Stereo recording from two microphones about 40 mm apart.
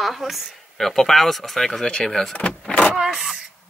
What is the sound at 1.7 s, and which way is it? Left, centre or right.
Speech, centre.